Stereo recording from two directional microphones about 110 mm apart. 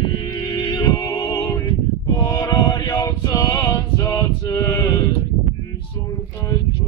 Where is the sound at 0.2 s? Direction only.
35° left (ahead or behind).